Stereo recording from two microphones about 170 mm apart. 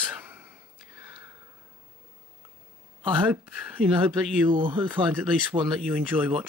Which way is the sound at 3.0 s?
10° right (ahead or behind).